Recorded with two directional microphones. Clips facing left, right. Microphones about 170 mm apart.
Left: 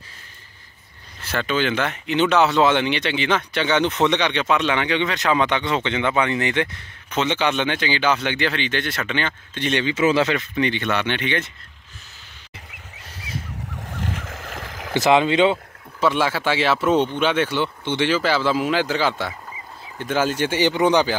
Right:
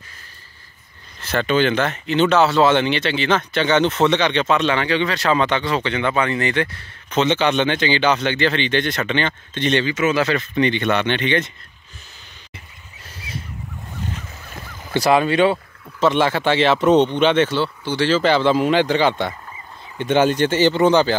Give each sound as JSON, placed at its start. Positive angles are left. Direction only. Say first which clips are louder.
{"t": 1.2, "sound": "speech", "louder": "right 4 dB", "side_deg": 5}
{"t": 9.8, "sound": "speech", "louder": "left 1 dB", "side_deg": 30}
{"t": 10.5, "sound": "speech", "louder": "right 4 dB", "side_deg": 5}
{"t": 13.9, "sound": "boat", "louder": "left 2 dB", "side_deg": 90}
{"t": 14.9, "sound": "speech", "louder": "even", "side_deg": 20}
{"t": 16.0, "sound": "speech", "louder": "right 3 dB", "side_deg": 5}
{"t": 18.2, "sound": "speech", "louder": "right 4 dB", "side_deg": 5}